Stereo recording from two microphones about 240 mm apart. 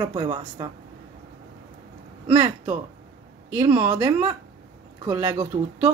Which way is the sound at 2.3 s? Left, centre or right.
Centre.